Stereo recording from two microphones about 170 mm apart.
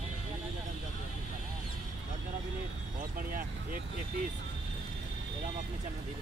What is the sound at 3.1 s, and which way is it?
Speech, 55° right (ahead or behind).